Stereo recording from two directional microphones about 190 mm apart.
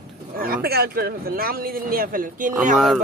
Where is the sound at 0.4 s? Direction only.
50° right (ahead or behind).